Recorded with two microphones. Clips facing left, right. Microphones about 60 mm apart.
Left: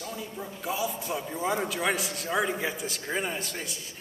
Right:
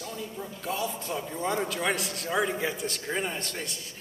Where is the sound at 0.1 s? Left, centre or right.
Centre.